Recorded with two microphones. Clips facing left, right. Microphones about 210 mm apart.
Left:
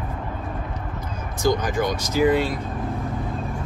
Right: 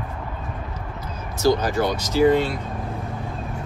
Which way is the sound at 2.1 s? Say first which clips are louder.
Right 2 dB; 10° left (ahead or behind).